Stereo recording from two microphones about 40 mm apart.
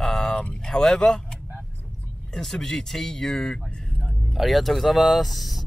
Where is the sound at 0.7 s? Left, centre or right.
Centre.